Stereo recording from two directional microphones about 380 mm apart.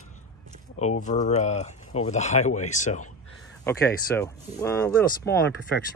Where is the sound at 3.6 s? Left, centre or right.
Centre.